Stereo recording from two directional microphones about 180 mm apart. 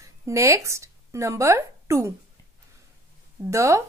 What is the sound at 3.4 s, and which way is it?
Speech, 15° right (ahead or behind).